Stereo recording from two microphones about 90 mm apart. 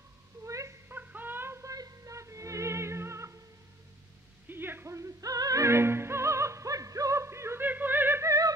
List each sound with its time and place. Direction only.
0.4 s a sound: 35° right (ahead or behind)
4.5 s music: 25° right (ahead or behind)
8.3 s music: 40° right (ahead or behind)